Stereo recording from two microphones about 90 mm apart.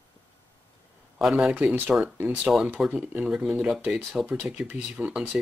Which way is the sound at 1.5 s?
15° right (ahead or behind).